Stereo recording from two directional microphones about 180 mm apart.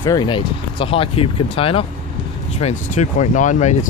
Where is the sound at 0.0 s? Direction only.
25° left (ahead or behind).